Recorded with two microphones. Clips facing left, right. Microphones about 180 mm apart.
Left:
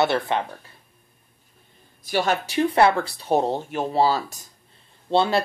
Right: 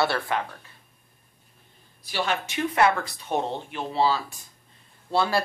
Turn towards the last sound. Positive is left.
turn(degrees=25)  # may be behind; listen again after turning